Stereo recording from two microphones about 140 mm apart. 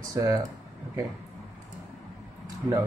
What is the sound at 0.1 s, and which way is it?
Speech, 25° right (ahead or behind).